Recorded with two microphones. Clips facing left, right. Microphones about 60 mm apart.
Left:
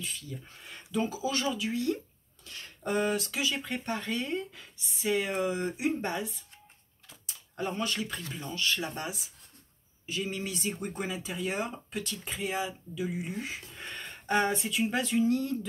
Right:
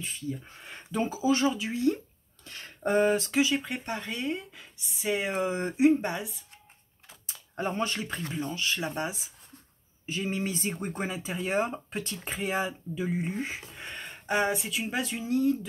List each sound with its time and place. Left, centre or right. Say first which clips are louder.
0.0 s speech: right 5 dB; right
5.4 s speech: right 5 dB; right
5.9 s speech: right 1 dB; centre
7.1 s typewriter: right 1 dB; right
8.4 s speech: even; centre
12.4 s speech: right 3 dB; right
13.7 s speech: right 1 dB; centre